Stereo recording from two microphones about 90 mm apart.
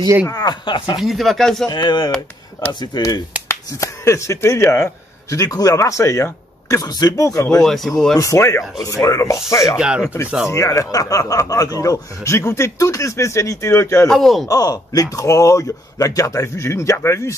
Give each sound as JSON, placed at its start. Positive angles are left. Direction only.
{"t": 0.2, "sound": "speech", "side_deg": 45}
{"t": 0.9, "sound": "speech", "side_deg": 0}
{"t": 1.7, "sound": "speech", "side_deg": 55}
{"t": 3.4, "sound": "speech", "side_deg": 35}
{"t": 6.8, "sound": "speech", "side_deg": 45}
{"t": 7.4, "sound": "speech", "side_deg": 5}
{"t": 8.2, "sound": "a man's voice", "side_deg": 35}
{"t": 9.8, "sound": "speech", "side_deg": -10}
{"t": 10.0, "sound": "a man's voice", "side_deg": 30}
{"t": 14.0, "sound": "speech", "side_deg": 0}
{"t": 14.5, "sound": "a man's voice", "side_deg": 45}